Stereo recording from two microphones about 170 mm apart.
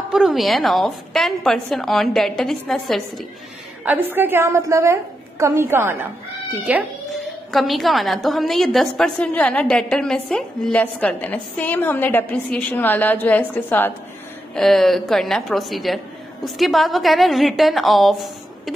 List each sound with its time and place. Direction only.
0.1 s a woman's voice: centre (ahead or behind)
3.8 s a woman's voice: 10° right (ahead or behind)
7.5 s a woman's voice: centre (ahead or behind)